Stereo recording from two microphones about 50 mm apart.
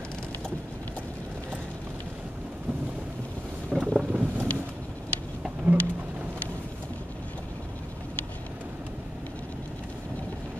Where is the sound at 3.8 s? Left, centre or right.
Right.